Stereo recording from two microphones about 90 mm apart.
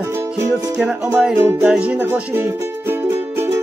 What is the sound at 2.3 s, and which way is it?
Speech, 25° right (ahead or behind).